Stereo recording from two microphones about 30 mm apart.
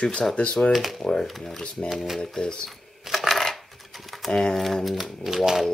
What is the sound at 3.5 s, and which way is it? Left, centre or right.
Coin, centre.